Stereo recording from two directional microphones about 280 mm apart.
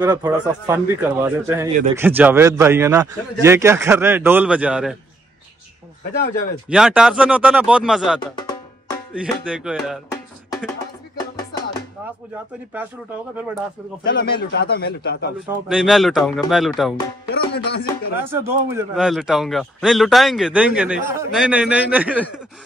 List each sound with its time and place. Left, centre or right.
0.0 s a man's voice: centre
6.1 s a man's voice: left
6.7 s a man's voice: centre
14.0 s a man's voice: left
15.7 s a man's voice: centre
17.3 s a man's voice: left
18.3 s a man's voice: centre